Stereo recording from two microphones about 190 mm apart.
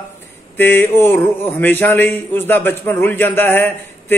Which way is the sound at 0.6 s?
10° left (ahead or behind).